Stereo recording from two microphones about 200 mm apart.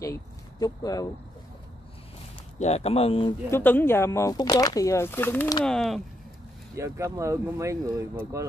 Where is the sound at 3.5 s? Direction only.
10° left (ahead or behind).